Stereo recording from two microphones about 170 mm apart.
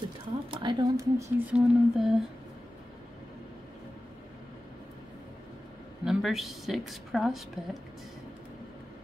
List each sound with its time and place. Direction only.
0.5 s speech: 25° right (ahead or behind)
1.5 s a woman's voice: 5° right (ahead or behind)
6.0 s a man's voice: centre (ahead or behind)